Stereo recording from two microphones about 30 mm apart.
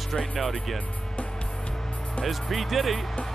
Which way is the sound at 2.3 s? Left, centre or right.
Centre.